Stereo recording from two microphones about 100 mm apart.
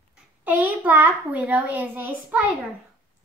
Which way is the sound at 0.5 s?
15° right (ahead or behind).